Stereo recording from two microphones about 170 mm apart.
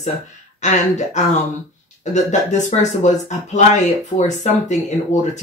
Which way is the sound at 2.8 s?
45° left (ahead or behind).